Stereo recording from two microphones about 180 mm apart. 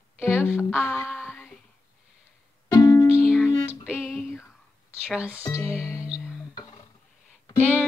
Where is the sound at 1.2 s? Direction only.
5° left (ahead or behind).